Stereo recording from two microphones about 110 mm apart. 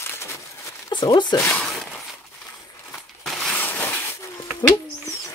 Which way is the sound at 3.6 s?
15° left (ahead or behind).